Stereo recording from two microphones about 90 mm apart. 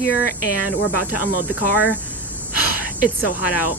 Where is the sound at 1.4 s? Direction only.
20° right (ahead or behind).